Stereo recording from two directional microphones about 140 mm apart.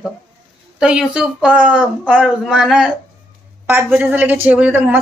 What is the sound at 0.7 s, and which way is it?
Speech, 5° right (ahead or behind).